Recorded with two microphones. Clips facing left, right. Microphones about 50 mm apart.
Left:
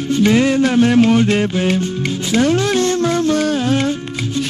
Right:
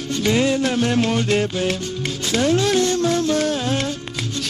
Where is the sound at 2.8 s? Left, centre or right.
Left.